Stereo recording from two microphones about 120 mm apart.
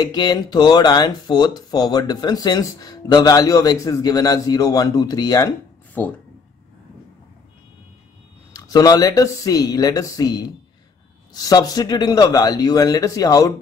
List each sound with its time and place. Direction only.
0.0 s speech: 35° left (ahead or behind)
6.0 s speech: 15° left (ahead or behind)
8.5 s speech: 30° left (ahead or behind)